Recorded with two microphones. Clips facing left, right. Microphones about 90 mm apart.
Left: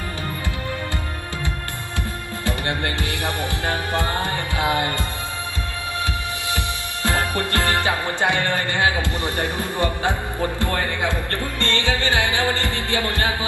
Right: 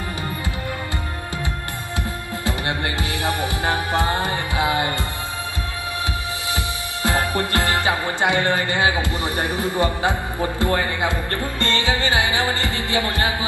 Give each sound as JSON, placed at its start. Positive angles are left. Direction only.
{"t": 2.4, "sound": "music", "side_deg": -20}
{"t": 6.5, "sound": "music", "side_deg": -20}
{"t": 10.6, "sound": "a man's voice", "side_deg": -20}
{"t": 11.6, "sound": "music", "side_deg": -20}